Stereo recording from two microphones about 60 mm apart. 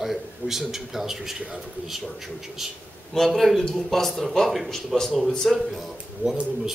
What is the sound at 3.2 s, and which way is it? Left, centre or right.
A man's voice, centre.